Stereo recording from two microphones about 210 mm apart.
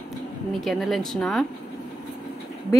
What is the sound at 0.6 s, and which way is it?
Speech, centre (ahead or behind).